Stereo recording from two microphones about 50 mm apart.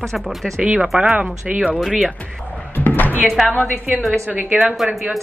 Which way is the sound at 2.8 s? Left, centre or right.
Left.